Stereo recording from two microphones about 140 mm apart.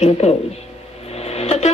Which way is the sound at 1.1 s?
50° left (ahead or behind).